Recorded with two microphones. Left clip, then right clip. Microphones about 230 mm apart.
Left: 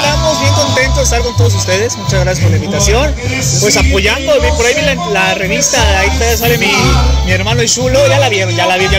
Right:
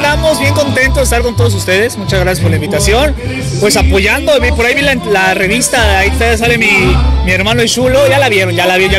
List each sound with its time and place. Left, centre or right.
0.0 s music: right
1.7 s speech: right